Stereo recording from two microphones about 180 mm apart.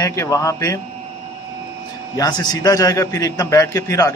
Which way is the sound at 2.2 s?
25° left (ahead or behind).